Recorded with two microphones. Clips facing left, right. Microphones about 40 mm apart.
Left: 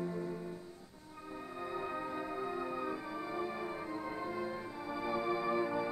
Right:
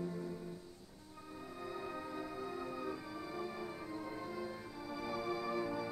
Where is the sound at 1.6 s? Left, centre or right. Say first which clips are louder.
Left 5 dB; left.